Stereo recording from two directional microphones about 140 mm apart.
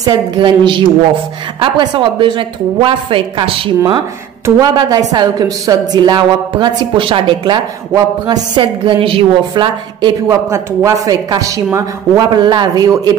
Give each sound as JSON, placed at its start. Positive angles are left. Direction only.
{"t": 0.0, "sound": "a woman's voice", "side_deg": -35}
{"t": 4.6, "sound": "a woman's voice", "side_deg": -30}
{"t": 10.2, "sound": "speech", "side_deg": -20}